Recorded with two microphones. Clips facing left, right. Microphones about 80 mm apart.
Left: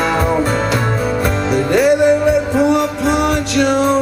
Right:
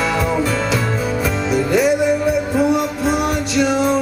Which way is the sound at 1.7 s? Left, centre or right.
Left.